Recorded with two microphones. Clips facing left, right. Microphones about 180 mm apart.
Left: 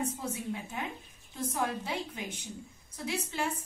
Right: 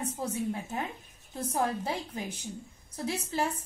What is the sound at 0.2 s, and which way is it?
A woman's voice, 40° right (ahead or behind).